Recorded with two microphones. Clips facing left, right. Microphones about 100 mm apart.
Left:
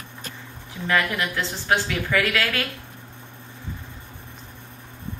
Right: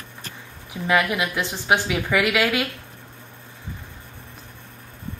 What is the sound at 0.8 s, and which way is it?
A woman's voice, 15° right (ahead or behind).